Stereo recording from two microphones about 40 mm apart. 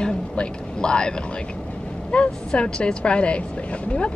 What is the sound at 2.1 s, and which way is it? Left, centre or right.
A woman's voice, left.